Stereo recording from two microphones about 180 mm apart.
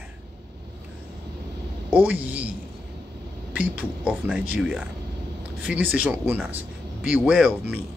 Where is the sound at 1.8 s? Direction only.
10° right (ahead or behind).